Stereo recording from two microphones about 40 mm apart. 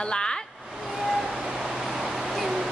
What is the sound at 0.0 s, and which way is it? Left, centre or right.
Vehicle, centre.